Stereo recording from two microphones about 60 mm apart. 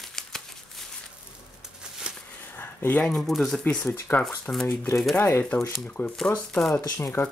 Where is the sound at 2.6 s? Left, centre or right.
Left.